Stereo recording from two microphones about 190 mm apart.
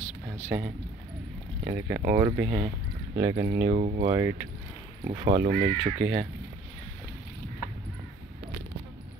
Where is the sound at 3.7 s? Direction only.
40° right (ahead or behind).